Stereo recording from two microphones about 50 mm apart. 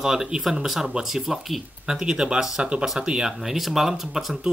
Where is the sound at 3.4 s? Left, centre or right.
Centre.